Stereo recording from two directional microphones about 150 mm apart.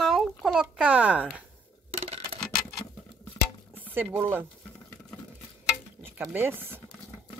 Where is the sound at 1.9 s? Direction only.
45° right (ahead or behind).